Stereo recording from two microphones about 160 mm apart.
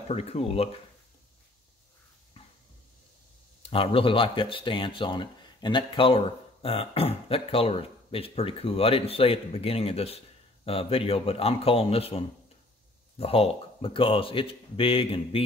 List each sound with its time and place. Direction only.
0.1 s speech: 40° left (ahead or behind)
3.6 s speech: 35° left (ahead or behind)